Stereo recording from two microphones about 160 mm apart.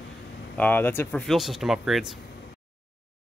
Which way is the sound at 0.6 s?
10° left (ahead or behind).